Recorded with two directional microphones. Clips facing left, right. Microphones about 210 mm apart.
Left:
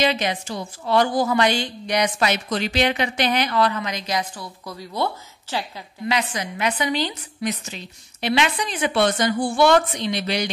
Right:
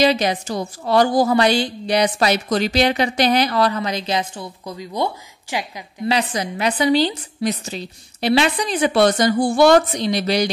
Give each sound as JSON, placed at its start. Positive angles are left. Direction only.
{"t": 0.0, "sound": "a woman's voice", "side_deg": -40}
{"t": 6.0, "sound": "a woman's voice", "side_deg": -35}